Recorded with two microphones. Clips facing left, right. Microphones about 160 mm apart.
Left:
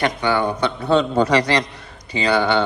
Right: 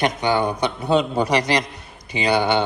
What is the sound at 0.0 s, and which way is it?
Speech, 15° right (ahead or behind).